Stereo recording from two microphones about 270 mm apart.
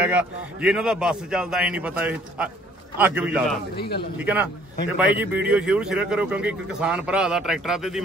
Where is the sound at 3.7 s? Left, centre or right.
Left.